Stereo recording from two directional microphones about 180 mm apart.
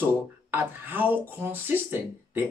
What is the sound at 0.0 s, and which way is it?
Speech, 10° right (ahead or behind).